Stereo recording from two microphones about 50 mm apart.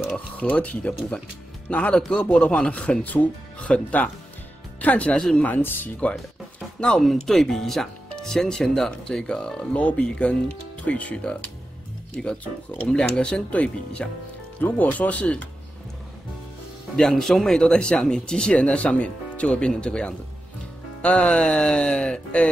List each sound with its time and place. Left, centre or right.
0.0 s speech: left
5.4 s speech: left
7.0 s speech: centre; by 15.4 s left
17.1 s speech: centre; by 22.5 s left